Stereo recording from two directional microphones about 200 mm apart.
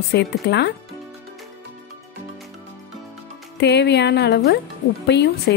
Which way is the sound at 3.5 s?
55° left (ahead or behind).